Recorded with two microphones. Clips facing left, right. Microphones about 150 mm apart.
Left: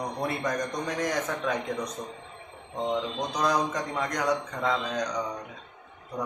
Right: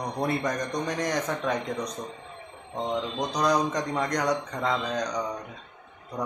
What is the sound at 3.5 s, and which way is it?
A man's voice, 5° left (ahead or behind).